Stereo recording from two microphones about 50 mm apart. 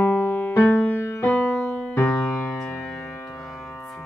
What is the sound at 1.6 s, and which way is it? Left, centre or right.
Keyboard, centre.